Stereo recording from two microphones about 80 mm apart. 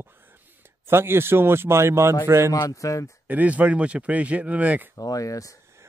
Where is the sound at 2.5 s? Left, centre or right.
Left.